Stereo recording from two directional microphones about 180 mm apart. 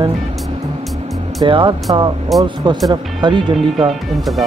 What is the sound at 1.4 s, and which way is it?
Speech, 25° right (ahead or behind).